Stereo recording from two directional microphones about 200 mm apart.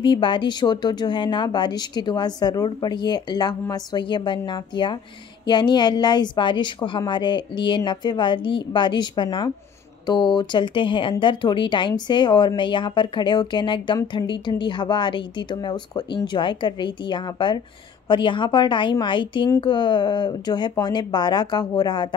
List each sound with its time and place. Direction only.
0.0 s speech: 25° left (ahead or behind)